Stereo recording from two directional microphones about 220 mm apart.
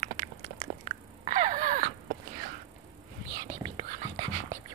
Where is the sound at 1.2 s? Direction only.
35° right (ahead or behind).